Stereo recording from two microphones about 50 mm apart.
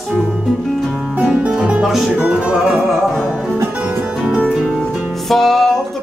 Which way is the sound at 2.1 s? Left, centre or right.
Right.